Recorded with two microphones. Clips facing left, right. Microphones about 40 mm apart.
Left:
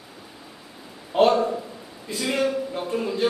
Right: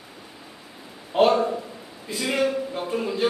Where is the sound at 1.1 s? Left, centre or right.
Centre.